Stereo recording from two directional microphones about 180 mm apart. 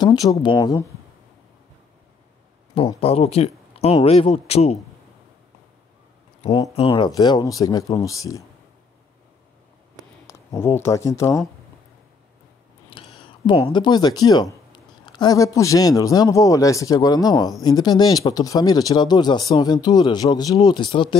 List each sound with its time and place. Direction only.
0.0 s speech: 25° left (ahead or behind)
2.7 s speech: 30° left (ahead or behind)
6.7 s speech: 30° left (ahead or behind)
10.2 s speech: 15° left (ahead or behind)
12.9 s speech: 30° left (ahead or behind)